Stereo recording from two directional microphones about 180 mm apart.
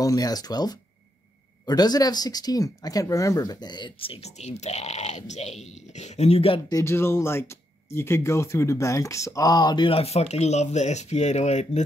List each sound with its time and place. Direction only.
0.0 s speech: 20° left (ahead or behind)
6.7 s speech: 15° left (ahead or behind); by 11.8 s 40° left (ahead or behind)